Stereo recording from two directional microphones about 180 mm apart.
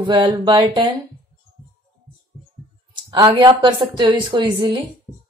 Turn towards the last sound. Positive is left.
turn(degrees=-30)  # may be behind; listen again after turning